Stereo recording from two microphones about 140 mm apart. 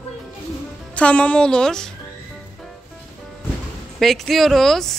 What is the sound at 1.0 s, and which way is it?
Speech, 10° left (ahead or behind).